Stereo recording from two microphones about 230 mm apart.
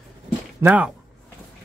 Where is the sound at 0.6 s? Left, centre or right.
Centre.